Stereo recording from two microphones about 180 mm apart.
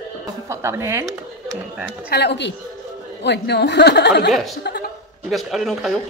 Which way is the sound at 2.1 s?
70° left (ahead or behind).